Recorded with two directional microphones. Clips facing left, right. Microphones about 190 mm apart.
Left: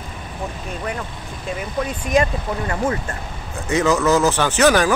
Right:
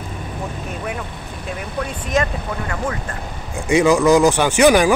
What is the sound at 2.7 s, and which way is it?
Speech, 25° left (ahead or behind).